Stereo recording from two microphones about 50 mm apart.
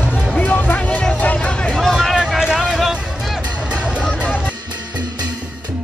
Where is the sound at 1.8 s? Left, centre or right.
Centre.